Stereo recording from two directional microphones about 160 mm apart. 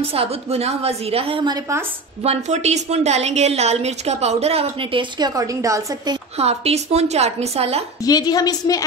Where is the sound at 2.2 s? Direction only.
45° right (ahead or behind); by 6.1 s 20° right (ahead or behind).